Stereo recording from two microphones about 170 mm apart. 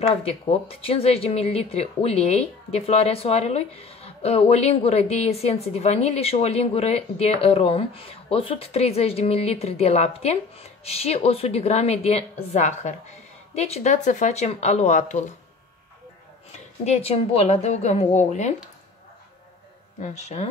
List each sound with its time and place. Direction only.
0.2 s speech: 35° left (ahead or behind)
16.5 s speech: 40° left (ahead or behind)
20.0 s speech: 40° left (ahead or behind)